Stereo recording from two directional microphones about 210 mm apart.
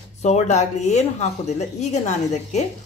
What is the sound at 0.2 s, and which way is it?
A woman's voice, 35° left (ahead or behind).